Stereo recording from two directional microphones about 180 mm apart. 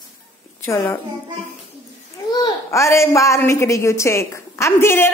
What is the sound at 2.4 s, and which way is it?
A woman's voice, 15° left (ahead or behind).